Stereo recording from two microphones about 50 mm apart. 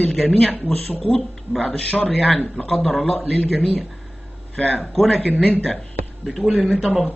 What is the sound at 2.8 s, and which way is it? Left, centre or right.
Speech, centre.